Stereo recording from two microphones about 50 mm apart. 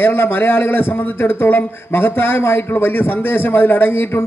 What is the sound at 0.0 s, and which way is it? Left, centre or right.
A man's voice, left.